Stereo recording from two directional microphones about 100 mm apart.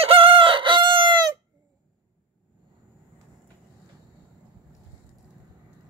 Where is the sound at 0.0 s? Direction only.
70° right (ahead or behind); by 1.2 s 55° right (ahead or behind).